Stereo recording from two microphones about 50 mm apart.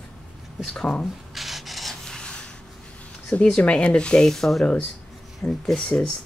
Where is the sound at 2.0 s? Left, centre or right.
Centre.